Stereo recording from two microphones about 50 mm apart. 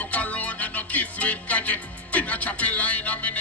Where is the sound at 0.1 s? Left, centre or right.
Left.